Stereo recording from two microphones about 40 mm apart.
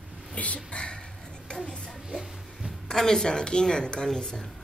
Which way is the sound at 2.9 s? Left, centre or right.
Centre.